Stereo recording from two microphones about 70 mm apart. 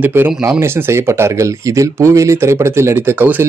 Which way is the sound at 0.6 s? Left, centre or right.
Right.